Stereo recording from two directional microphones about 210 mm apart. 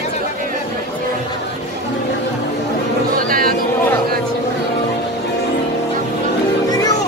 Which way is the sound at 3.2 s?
45° right (ahead or behind).